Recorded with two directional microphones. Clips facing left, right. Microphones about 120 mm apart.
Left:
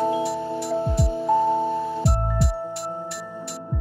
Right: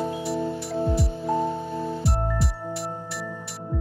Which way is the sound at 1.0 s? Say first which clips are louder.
Left 5 dB; 25° left (ahead or behind).